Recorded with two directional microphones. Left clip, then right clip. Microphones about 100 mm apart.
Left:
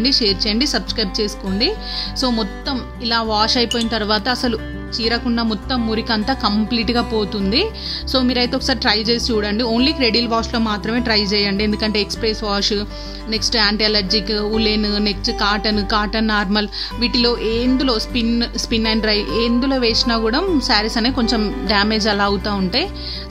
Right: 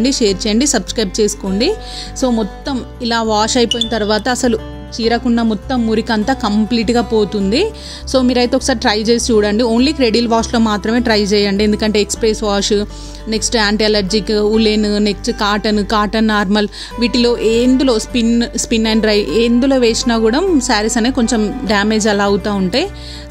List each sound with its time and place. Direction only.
0.0 s speech: 50° right (ahead or behind)
2.1 s speech: 30° right (ahead or behind)
3.0 s speech: 45° right (ahead or behind)
3.9 s speech: 20° right (ahead or behind)
4.2 s speech: 40° right (ahead or behind)